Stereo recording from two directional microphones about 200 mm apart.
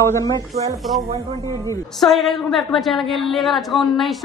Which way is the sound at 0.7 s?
Centre (ahead or behind).